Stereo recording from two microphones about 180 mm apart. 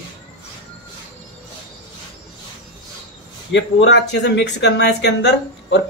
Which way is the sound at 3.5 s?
80° left.